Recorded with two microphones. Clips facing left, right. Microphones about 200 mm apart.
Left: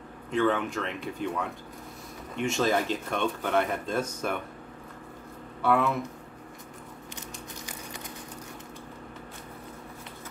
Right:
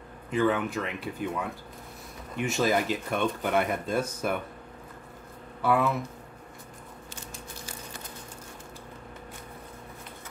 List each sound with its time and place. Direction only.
0.3 s speech: 5° right (ahead or behind)
5.6 s speech: 5° right (ahead or behind)
7.2 s a sound: 15° left (ahead or behind)